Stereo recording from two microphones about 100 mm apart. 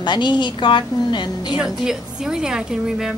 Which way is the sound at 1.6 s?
5° right (ahead or behind).